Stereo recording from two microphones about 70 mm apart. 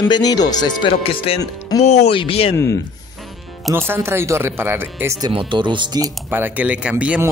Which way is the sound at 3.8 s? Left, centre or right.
Right.